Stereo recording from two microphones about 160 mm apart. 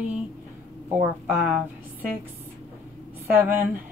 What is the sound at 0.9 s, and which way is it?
Speech, 10° right (ahead or behind).